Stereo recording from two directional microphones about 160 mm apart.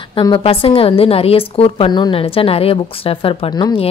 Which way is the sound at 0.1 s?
30° left (ahead or behind).